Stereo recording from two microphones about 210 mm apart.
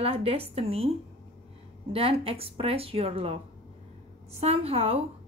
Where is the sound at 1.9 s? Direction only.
30° right (ahead or behind).